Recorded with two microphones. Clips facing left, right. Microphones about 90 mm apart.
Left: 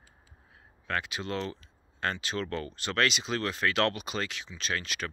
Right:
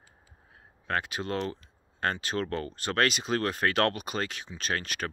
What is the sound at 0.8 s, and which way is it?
Speech, 40° right (ahead or behind).